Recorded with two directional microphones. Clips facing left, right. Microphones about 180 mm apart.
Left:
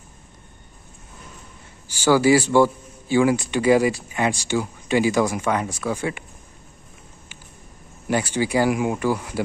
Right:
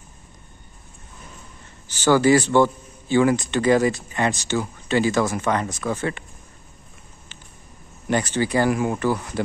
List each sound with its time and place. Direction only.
1.9 s a man's voice: 10° left (ahead or behind)
8.1 s a man's voice: 10° left (ahead or behind)